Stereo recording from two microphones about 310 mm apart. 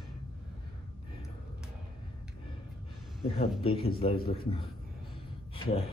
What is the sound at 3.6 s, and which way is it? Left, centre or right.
Speech, centre.